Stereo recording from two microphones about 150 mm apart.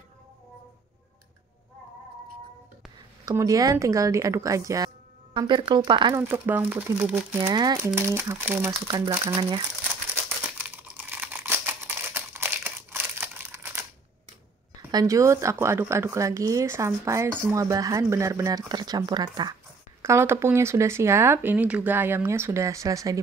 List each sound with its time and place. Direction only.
3.3 s speech: 20° right (ahead or behind)
6.1 s speech: 15° right (ahead or behind)
7.3 s speech: 25° right (ahead or behind)
8.8 s speech: 30° right (ahead or behind)
10.6 s crumpling: 10° right (ahead or behind)
14.9 s speech: 20° right (ahead or behind)
20.0 s speech: 15° right (ahead or behind)